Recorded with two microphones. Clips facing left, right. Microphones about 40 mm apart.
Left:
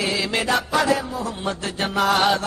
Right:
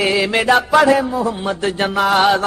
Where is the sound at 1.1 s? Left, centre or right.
Centre.